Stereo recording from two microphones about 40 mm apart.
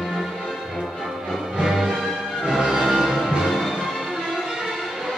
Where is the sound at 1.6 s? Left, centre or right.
Centre.